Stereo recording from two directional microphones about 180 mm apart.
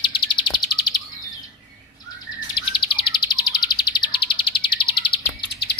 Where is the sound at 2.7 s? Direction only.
25° left (ahead or behind).